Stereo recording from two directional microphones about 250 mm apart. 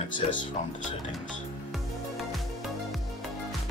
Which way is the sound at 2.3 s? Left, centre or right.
Centre.